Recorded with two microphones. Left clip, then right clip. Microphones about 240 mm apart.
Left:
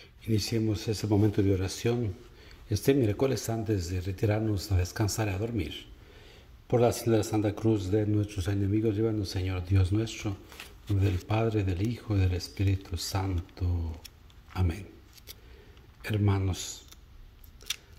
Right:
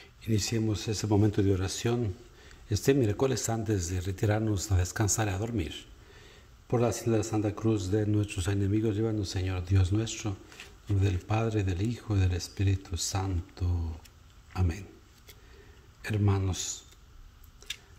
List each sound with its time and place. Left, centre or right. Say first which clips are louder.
0.0 s a man's voice: even; centre
16.0 s a man's voice: left 1 dB; centre
17.6 s scissors: left 4 dB; centre